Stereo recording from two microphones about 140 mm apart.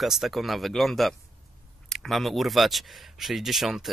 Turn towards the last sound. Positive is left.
turn(degrees=0)  # may be behind; listen again after turning